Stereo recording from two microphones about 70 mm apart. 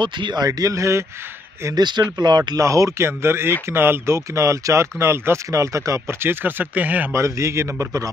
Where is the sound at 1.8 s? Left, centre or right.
Right.